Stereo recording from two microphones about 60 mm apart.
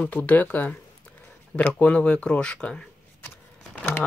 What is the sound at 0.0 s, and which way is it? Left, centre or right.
Speech, left.